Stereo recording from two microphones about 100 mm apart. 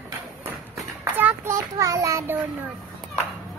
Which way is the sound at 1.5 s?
35° right (ahead or behind).